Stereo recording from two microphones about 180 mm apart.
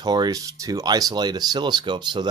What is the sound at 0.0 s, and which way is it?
Speech, 20° right (ahead or behind).